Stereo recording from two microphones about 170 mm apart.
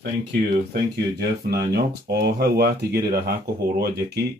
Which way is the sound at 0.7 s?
70° right (ahead or behind).